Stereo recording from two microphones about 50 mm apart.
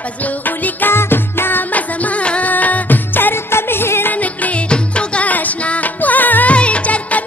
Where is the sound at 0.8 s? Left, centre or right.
Left.